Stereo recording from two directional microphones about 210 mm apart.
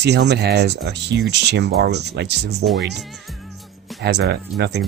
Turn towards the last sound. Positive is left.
turn(degrees=-50)  # may be behind; listen again after turning